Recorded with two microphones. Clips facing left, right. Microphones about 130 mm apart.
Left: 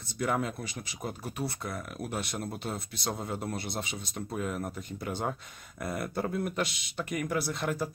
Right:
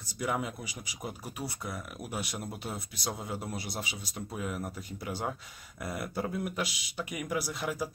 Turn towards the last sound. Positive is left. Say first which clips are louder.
# left 2 dB
turn(degrees=-5)  # may be behind; listen again after turning